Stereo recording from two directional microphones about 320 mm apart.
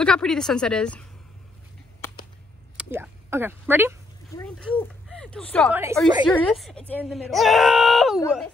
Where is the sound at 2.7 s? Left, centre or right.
Centre.